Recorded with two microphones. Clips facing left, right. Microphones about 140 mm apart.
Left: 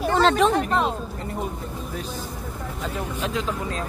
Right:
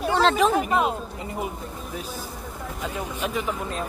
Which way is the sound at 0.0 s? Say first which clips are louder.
Left 1 dB; centre (ahead or behind).